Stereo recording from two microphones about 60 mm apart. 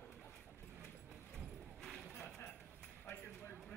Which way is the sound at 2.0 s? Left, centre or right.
Centre.